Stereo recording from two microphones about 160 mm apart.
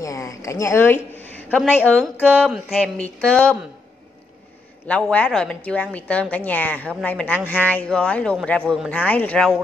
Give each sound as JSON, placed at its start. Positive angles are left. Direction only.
{"t": 0.0, "sound": "a woman's voice", "side_deg": 20}
{"t": 4.8, "sound": "a man's voice", "side_deg": 10}